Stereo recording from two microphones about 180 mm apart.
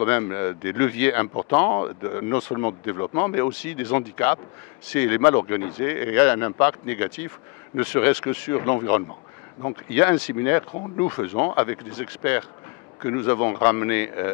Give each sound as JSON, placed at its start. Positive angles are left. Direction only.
{"t": 0.0, "sound": "speech", "side_deg": 15}